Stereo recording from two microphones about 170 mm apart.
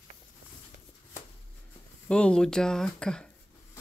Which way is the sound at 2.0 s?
5° left (ahead or behind).